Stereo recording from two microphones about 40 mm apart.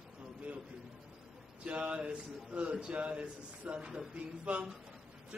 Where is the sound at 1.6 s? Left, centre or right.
Right.